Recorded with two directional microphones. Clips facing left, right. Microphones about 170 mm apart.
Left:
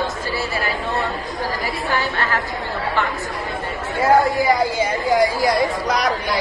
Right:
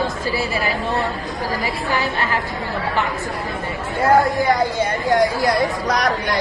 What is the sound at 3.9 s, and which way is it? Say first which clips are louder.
A woman's voice: even; centre (ahead or behind).